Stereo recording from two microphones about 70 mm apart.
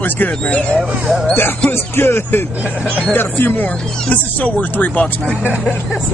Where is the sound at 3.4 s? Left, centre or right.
Left.